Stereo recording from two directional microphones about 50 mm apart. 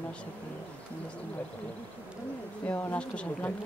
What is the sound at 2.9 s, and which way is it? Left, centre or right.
Speech, left.